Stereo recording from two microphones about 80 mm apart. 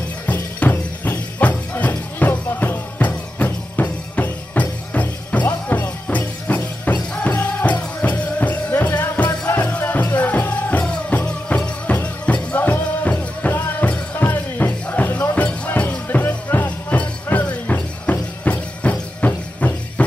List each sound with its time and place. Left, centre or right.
0.3 s music: left